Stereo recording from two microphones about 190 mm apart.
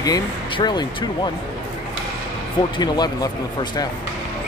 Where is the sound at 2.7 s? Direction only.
20° left (ahead or behind).